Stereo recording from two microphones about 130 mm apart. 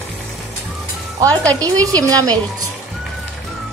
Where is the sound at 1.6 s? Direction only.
30° right (ahead or behind).